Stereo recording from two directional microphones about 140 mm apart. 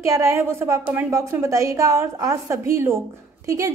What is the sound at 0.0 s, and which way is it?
A woman's voice, 20° right (ahead or behind).